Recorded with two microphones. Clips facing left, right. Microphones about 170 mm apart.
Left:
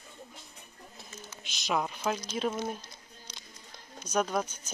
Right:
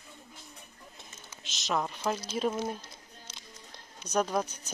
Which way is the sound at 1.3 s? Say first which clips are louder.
Left 2 dB; 20° right (ahead or behind).